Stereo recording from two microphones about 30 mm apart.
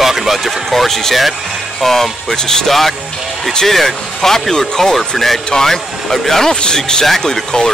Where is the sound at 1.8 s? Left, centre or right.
Centre.